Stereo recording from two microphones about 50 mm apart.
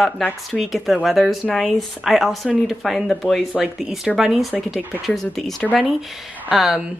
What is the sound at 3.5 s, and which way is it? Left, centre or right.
Speech, centre.